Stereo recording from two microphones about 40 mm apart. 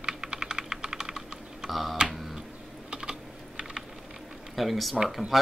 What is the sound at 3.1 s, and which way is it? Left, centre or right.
Typing, centre.